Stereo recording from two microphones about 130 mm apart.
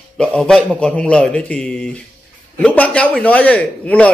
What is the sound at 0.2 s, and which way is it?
A man's voice, 5° left (ahead or behind).